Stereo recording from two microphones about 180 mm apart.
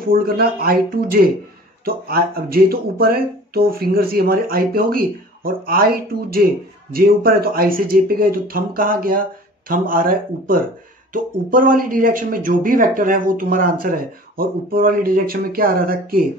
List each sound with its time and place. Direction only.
0.0 s speech: 55° right (ahead or behind)